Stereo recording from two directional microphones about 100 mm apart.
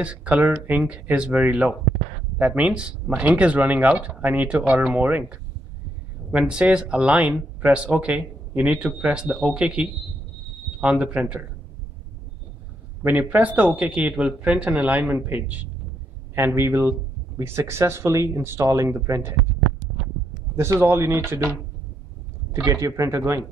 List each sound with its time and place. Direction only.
0.0 s speech: 15° right (ahead or behind)
13.0 s speech: 15° right (ahead or behind)
20.5 s speech: 25° right (ahead or behind)
22.5 s speech: 30° right (ahead or behind)